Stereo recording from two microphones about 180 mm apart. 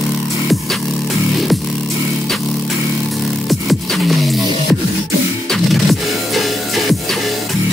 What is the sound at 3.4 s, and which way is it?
Music, centre (ahead or behind).